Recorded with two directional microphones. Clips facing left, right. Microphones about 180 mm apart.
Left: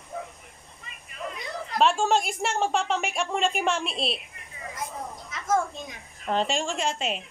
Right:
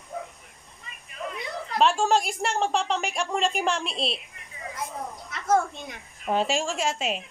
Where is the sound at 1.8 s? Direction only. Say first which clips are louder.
Right 1 dB; centre (ahead or behind).